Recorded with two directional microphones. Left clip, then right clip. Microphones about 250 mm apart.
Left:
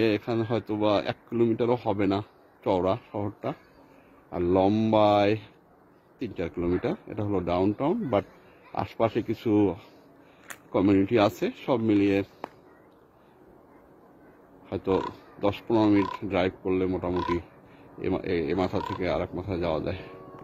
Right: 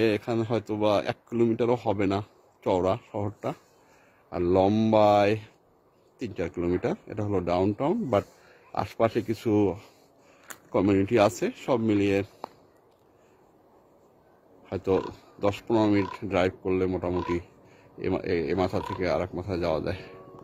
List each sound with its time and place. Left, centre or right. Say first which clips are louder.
0.0 s speech: even; centre
14.7 s speech: even; centre